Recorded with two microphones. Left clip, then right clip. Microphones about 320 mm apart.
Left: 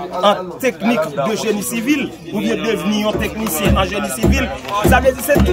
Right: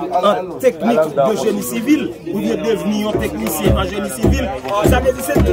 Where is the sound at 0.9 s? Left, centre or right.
Right.